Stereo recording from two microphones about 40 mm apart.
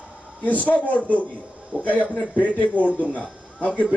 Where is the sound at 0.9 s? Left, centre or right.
Left.